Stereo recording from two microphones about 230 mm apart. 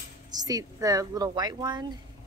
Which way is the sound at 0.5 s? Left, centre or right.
Centre.